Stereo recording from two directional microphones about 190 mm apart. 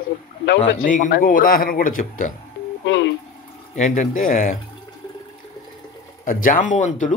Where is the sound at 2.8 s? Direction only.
70° left (ahead or behind).